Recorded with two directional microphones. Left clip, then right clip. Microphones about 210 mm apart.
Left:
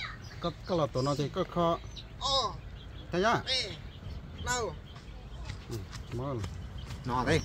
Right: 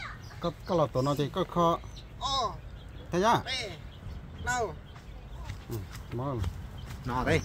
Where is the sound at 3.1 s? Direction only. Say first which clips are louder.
Right 3 dB; 60° right (ahead or behind).